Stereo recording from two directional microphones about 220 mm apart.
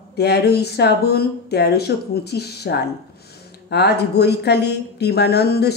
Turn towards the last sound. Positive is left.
turn(degrees=45)  # may be behind; listen again after turning